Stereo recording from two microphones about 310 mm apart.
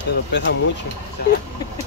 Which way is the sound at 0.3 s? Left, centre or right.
Left.